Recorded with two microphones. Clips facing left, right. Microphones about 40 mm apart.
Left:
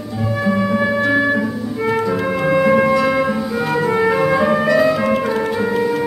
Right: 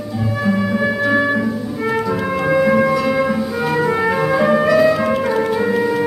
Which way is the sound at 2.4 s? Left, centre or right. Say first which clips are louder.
Even; centre.